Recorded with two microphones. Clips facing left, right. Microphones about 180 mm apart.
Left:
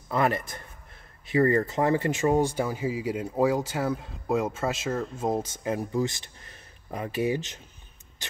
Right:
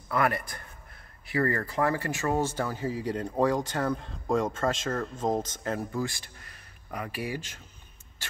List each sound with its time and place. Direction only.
0.1 s a man's voice: 25° left (ahead or behind)